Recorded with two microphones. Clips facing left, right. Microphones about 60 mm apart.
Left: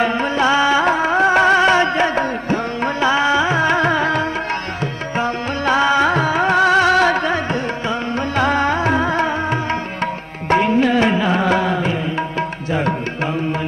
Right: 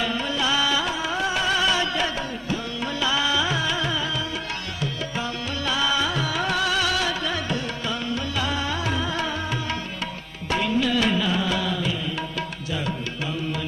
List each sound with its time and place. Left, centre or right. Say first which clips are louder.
0.0 s music: left 9 dB; left
5.1 s music: left 8 dB; left
8.4 s music: left 13 dB; left